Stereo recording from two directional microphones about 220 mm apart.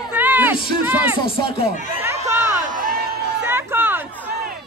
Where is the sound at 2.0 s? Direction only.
15° right (ahead or behind).